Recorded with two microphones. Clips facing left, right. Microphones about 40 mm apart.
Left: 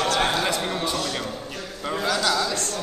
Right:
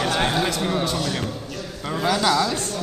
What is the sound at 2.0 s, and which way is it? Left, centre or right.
Speech, centre.